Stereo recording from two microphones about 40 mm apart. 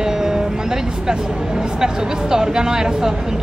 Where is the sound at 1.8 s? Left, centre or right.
Centre.